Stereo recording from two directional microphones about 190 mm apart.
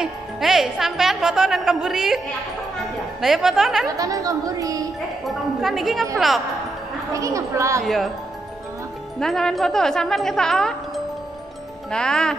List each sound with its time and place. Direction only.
0.0 s a woman's voice: centre (ahead or behind)
3.8 s speech: 20° right (ahead or behind)
5.2 s a woman's voice: centre (ahead or behind)
7.1 s speech: 15° right (ahead or behind)
7.8 s a woman's voice: centre (ahead or behind)
9.2 s a woman's voice: centre (ahead or behind)
11.9 s a woman's voice: 5° left (ahead or behind)